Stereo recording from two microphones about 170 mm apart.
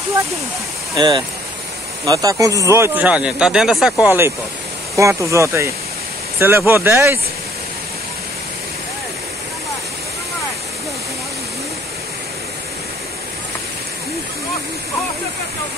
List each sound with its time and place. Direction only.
0.9 s speech: 25° right (ahead or behind); by 3.9 s centre (ahead or behind)
4.0 s speech: 15° right (ahead or behind)